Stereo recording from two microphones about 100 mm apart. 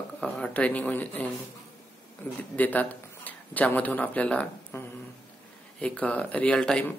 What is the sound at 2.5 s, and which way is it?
Speech, 15° left (ahead or behind).